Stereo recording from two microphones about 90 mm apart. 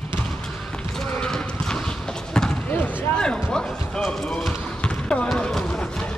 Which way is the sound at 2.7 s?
25° left (ahead or behind).